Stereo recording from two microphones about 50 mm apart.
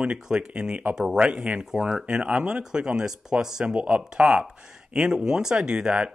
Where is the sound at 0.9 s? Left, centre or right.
Centre.